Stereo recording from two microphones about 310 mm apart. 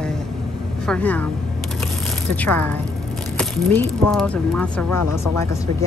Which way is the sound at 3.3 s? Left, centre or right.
Centre.